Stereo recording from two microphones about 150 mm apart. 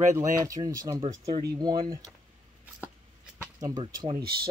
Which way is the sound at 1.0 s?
40° right (ahead or behind).